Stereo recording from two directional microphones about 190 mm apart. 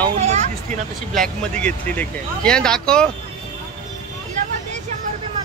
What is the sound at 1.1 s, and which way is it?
Speech, 5° left (ahead or behind).